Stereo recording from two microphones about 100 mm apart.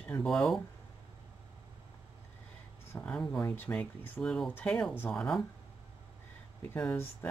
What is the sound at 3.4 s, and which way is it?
Speech, 20° left (ahead or behind).